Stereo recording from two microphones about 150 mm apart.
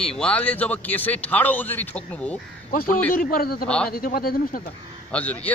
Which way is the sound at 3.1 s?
75° left (ahead or behind).